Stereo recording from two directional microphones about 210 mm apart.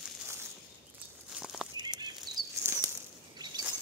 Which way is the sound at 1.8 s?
20° right (ahead or behind).